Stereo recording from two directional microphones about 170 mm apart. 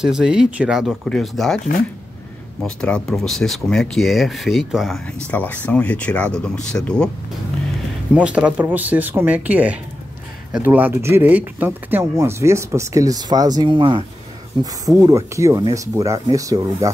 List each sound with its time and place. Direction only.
0.0 s speech: 5° right (ahead or behind)
2.6 s speech: 5° left (ahead or behind)
8.1 s speech: 5° right (ahead or behind)